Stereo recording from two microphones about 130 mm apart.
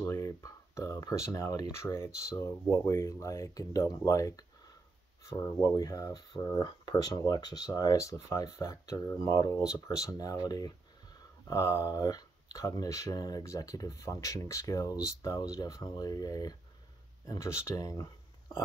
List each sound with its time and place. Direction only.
0.0 s speech: 20° left (ahead or behind)